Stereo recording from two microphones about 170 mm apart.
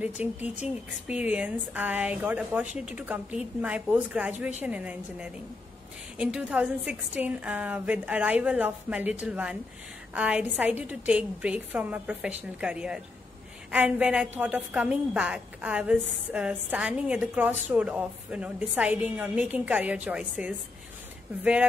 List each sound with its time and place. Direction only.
0.0 s a woman's voice: 10° right (ahead or behind)